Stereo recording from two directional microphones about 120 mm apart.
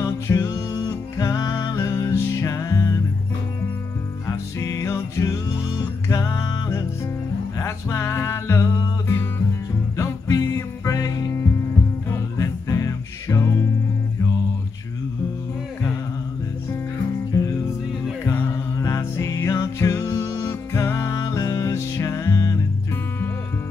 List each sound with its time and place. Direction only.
0.0 s music: 25° left (ahead or behind)
1.8 s music: 25° left (ahead or behind)
4.6 s music: 25° left (ahead or behind)
17.3 s music: 30° left (ahead or behind)
18.2 s music: 20° left (ahead or behind)